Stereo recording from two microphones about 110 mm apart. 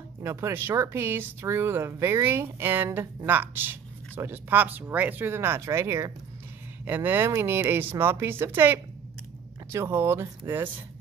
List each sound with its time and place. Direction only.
0.2 s speech: 25° right (ahead or behind)